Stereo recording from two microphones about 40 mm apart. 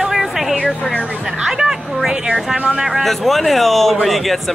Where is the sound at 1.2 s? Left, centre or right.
Centre.